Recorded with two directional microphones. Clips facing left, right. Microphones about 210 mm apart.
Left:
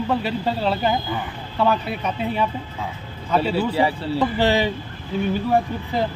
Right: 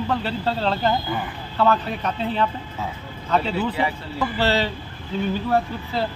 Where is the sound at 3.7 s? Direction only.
30° left (ahead or behind).